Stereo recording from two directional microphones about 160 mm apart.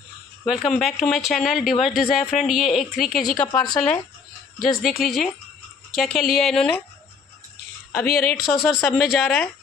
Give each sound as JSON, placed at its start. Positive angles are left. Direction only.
{"t": 0.5, "sound": "speech", "side_deg": 0}
{"t": 8.1, "sound": "speech", "side_deg": 70}
{"t": 8.5, "sound": "speech", "side_deg": 0}